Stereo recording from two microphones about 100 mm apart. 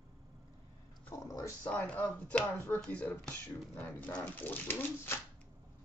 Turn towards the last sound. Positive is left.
turn(degrees=20)  # may be behind; listen again after turning